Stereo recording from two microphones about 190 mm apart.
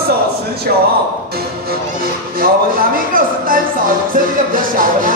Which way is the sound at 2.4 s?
50° right (ahead or behind).